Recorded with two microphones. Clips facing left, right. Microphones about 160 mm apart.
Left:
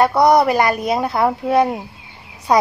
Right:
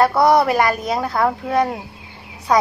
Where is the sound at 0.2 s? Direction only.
15° left (ahead or behind).